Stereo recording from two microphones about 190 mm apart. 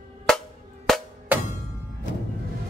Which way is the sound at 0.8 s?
Centre (ahead or behind).